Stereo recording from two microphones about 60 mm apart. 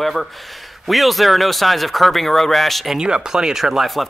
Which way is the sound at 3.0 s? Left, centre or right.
Centre.